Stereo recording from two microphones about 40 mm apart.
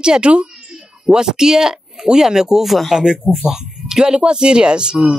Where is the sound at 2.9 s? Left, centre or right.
Centre.